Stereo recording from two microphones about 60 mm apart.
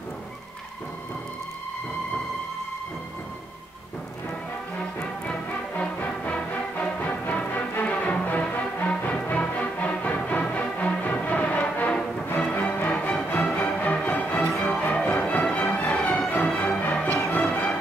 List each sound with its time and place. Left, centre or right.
5.8 s music: left
14.4 s music: centre
14.8 s music: left